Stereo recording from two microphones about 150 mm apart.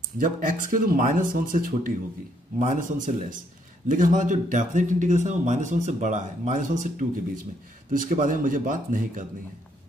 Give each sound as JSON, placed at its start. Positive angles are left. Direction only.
{"t": 0.2, "sound": "speech", "side_deg": -65}